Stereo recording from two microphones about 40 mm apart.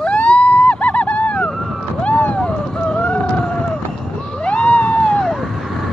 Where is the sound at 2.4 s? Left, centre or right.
Left.